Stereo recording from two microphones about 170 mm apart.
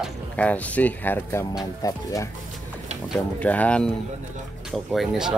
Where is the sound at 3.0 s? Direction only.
5° left (ahead or behind).